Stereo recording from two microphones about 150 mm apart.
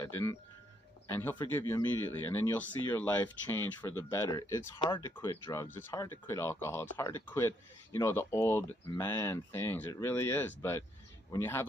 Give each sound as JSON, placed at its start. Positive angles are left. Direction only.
{"t": 0.0, "sound": "speech", "side_deg": 15}
{"t": 1.6, "sound": "speech", "side_deg": 25}
{"t": 2.1, "sound": "speech", "side_deg": 15}